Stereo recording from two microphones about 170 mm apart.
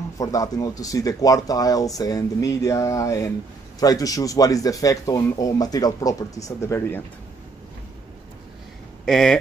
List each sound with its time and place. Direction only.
0.2 s a man's voice: 20° left (ahead or behind)
9.0 s speech: centre (ahead or behind)